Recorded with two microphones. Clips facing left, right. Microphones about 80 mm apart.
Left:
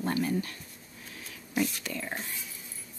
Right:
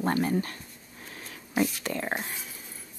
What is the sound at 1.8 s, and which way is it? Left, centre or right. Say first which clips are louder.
Speech: right 5 dB; right.